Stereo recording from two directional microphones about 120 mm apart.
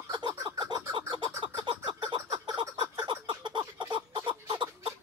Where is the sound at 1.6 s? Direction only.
45° right (ahead or behind).